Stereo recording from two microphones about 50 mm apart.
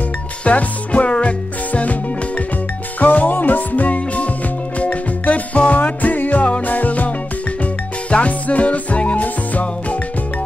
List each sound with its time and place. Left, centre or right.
0.5 s music: left